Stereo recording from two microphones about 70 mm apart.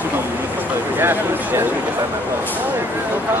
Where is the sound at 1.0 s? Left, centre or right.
Right.